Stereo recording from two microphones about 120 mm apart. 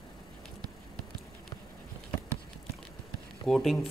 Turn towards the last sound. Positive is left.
turn(degrees=0)  # may be behind; listen again after turning